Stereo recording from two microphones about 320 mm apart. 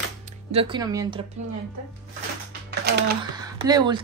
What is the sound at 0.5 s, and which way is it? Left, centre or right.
Speech, centre.